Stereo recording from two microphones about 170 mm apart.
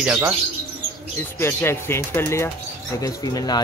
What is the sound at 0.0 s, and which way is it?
Speech, 10° right (ahead or behind).